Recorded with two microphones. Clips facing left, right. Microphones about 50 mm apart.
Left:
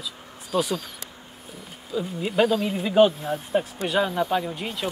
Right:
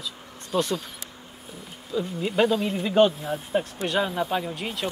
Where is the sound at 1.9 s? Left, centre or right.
Centre.